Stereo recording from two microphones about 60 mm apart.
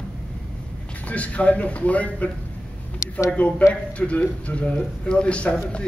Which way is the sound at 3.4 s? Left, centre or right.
Left.